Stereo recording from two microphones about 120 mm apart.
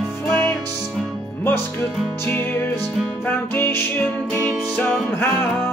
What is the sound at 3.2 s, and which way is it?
Music, 15° left (ahead or behind).